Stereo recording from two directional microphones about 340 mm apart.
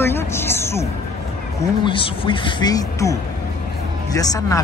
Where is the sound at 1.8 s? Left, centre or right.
Centre.